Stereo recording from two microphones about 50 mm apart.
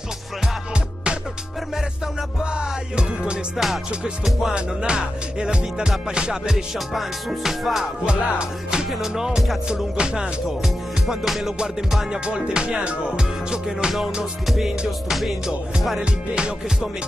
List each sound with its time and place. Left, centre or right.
2.5 s music: centre
3.5 s music: centre
8.0 s music: centre
10.4 s music: centre
14.9 s music: centre
16.0 s music: centre